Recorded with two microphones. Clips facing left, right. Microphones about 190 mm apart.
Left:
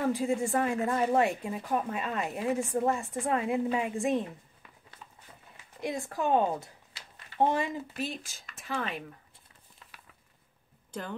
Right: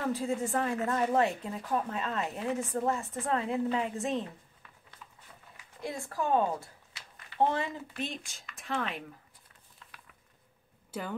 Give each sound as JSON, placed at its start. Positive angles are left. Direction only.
{"t": 0.1, "sound": "a woman's voice", "side_deg": 10}
{"t": 5.8, "sound": "a woman's voice", "side_deg": 20}
{"t": 8.0, "sound": "speech", "side_deg": 0}
{"t": 10.9, "sound": "speech", "side_deg": -5}